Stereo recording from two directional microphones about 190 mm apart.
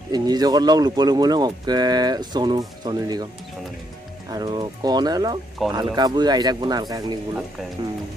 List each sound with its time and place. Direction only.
0.1 s speech: 20° right (ahead or behind)
4.3 s speech: 20° right (ahead or behind)
5.6 s speech: centre (ahead or behind)
5.9 s speech: 20° right (ahead or behind)